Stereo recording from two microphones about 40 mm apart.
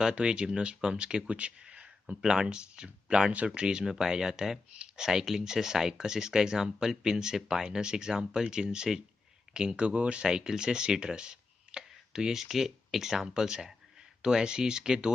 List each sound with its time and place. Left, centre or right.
0.2 s speech: right
10.2 s speech: centre
13.3 s speech: right